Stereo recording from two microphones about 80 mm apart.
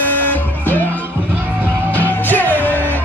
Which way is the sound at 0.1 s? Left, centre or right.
Left.